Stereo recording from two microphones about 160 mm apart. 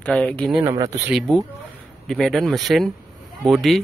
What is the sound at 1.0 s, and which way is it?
A man's voice, centre (ahead or behind).